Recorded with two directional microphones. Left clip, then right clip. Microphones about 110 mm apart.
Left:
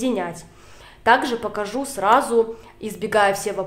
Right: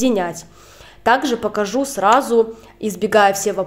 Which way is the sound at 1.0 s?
35° right (ahead or behind).